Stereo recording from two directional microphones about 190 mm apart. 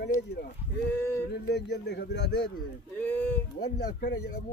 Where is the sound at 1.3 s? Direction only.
60° left (ahead or behind).